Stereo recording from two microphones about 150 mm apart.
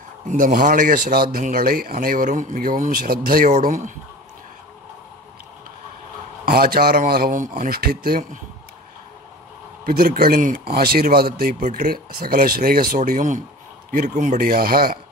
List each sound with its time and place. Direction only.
0.3 s speech: 60° right (ahead or behind)
6.4 s speech: 90° right
9.8 s speech: 75° right (ahead or behind)
10.7 s speech: 90° right
11.6 s speech: 75° right (ahead or behind)